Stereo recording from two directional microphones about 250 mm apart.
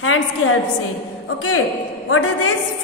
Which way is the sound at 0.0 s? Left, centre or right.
Left.